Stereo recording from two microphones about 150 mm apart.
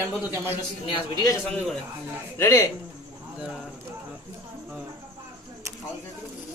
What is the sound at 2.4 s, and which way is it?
Speech, 15° left (ahead or behind).